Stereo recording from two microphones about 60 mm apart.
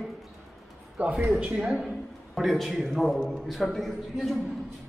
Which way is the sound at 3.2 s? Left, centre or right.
Centre.